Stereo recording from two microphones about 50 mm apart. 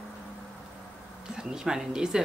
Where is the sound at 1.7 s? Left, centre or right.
Centre.